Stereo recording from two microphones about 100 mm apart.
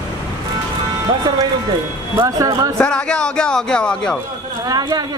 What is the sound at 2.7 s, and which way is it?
Speech, 10° left (ahead or behind).